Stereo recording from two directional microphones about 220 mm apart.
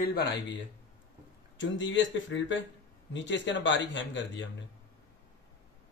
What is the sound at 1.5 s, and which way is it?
Speech, 55° left (ahead or behind).